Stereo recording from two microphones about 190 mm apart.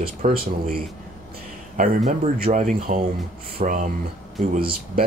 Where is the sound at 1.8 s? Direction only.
45° right (ahead or behind).